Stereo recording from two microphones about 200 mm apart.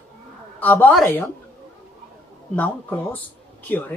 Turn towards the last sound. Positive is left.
turn(degrees=10)  # may be behind; listen again after turning